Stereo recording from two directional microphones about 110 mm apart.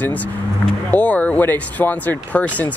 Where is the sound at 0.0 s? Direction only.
15° left (ahead or behind).